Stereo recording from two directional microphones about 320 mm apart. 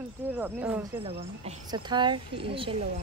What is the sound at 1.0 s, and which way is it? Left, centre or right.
Speech, centre.